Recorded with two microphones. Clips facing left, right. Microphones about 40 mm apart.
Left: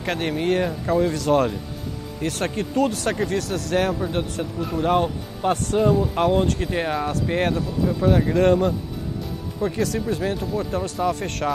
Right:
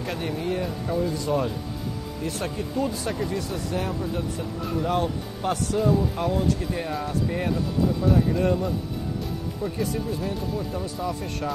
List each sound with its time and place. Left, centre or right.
0.0 s speech: left
2.2 s speech: left
4.7 s speech: left
8.3 s speech: left
10.8 s speech: left